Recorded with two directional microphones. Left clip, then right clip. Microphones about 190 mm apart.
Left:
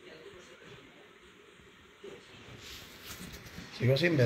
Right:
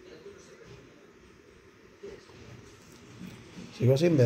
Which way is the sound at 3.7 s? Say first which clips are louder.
Right 4 dB; 65° right (ahead or behind).